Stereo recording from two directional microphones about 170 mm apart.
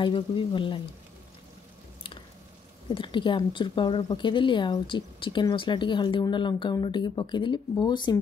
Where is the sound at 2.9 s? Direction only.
30° left (ahead or behind).